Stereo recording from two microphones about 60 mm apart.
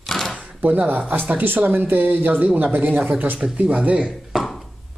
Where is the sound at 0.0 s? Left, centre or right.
Centre.